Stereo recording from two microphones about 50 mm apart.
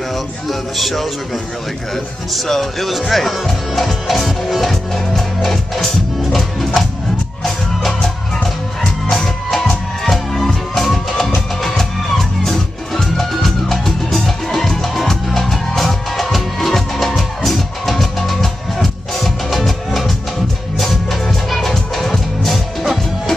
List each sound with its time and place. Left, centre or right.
0.1 s a man's voice: centre
7.4 s music: centre